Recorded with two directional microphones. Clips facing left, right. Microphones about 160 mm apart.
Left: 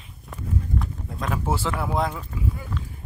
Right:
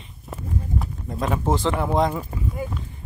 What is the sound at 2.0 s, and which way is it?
Speech, 5° right (ahead or behind).